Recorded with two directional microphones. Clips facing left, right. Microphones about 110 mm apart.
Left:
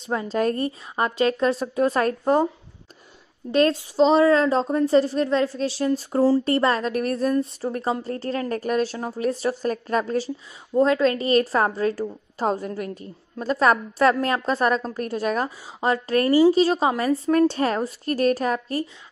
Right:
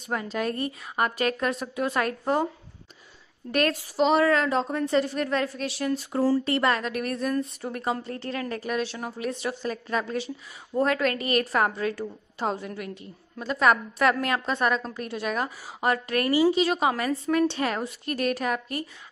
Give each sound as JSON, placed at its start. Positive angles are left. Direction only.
{"t": 0.0, "sound": "a woman's voice", "side_deg": 25}
{"t": 3.5, "sound": "a woman's voice", "side_deg": 25}
{"t": 10.7, "sound": "a woman's voice", "side_deg": 25}
{"t": 17.3, "sound": "a woman's voice", "side_deg": 40}